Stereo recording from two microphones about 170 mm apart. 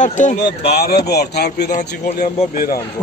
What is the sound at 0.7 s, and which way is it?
A man's voice, 65° left (ahead or behind).